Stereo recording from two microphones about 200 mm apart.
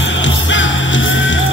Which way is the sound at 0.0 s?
70° left (ahead or behind).